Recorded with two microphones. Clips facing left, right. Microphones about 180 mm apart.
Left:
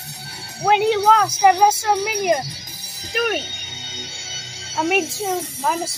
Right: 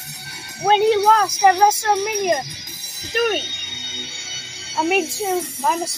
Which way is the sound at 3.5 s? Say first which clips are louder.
Even; 35° left (ahead or behind).